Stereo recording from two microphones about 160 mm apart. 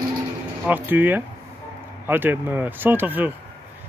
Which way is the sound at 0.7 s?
10° right (ahead or behind).